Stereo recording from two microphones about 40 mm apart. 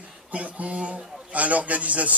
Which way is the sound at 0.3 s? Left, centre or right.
Right.